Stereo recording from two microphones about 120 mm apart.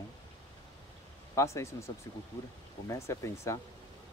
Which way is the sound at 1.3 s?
25° left (ahead or behind).